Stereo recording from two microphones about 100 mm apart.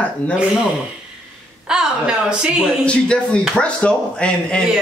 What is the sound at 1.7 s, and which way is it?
Speech, 10° right (ahead or behind).